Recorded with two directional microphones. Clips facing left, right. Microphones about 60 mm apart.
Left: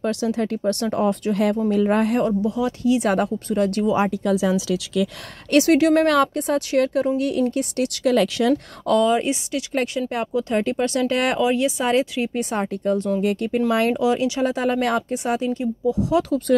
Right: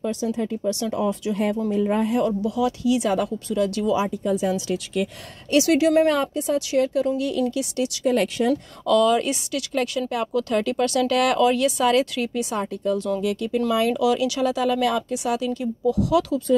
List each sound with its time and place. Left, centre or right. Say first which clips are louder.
0.0 s speech: left 3 dB; left
0.8 s speech: left 4 dB; left
1.7 s speech: left 3 dB; left
2.1 s speech: left 1 dB; left
4.2 s speech: left 2 dB; left
5.5 s speech: left 2 dB; left
6.0 s speech: left 3 dB; left
6.3 s speech: left 1 dB; left
8.0 s speech: left 3 dB; left
8.8 s speech: even; left
10.0 s speech: even; left
12.4 s speech: left 2 dB; left
13.9 s speech: left 1 dB; left